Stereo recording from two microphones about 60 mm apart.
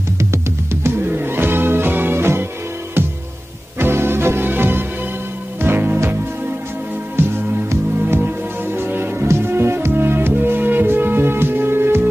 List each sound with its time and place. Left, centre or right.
0.8 s music: right
3.8 s music: right
7.2 s music: right
8.7 s music: right